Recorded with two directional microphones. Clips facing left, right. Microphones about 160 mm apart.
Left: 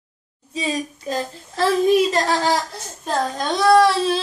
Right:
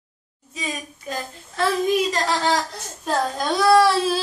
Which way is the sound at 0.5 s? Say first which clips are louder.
Left 7 dB; 30° left (ahead or behind).